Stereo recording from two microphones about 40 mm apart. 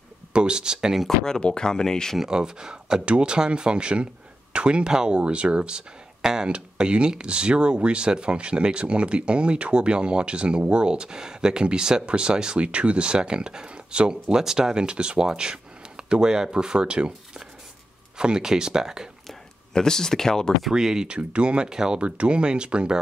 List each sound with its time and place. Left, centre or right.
0.3 s speech: right
1.2 s speech: centre
2.1 s speech: centre
18.1 s speech: right
19.7 s speech: centre
20.7 s speech: centre
21.2 s speech: right
22.0 s speech: right